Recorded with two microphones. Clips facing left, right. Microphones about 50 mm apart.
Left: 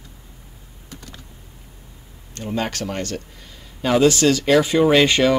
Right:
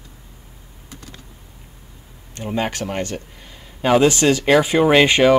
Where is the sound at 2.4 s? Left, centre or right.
Centre.